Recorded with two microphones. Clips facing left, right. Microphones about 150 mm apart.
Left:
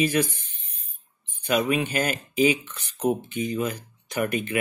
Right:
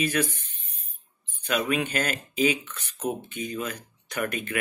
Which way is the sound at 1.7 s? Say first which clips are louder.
Left 2 dB; 10° left (ahead or behind).